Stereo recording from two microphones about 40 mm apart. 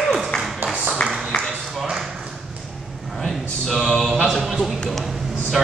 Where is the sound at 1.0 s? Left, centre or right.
Left.